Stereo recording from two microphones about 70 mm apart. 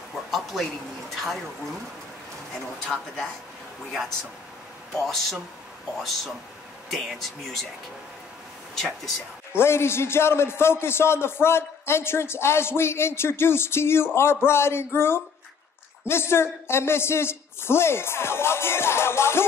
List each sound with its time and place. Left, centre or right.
0.3 s a sound: centre
2.9 s speech: centre
5.0 s speech: centre
6.9 s speech: centre
8.7 s speech: centre
9.6 s a man's voice: left